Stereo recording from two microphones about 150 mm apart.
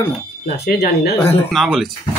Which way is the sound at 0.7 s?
90° left.